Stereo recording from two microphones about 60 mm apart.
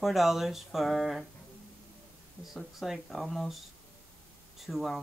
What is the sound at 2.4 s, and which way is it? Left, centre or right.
Speech, centre.